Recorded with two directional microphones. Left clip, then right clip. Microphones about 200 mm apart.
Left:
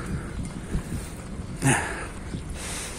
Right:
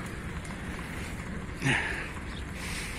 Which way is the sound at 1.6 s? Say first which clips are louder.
Left 4 dB; 25° left (ahead or behind).